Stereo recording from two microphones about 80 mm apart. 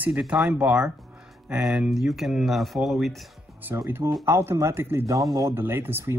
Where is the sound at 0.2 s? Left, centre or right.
Centre.